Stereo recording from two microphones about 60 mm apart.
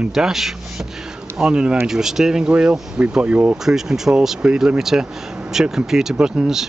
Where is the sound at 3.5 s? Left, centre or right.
Centre.